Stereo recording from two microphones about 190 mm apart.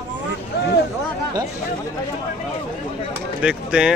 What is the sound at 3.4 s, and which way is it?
Speech, 5° right (ahead or behind).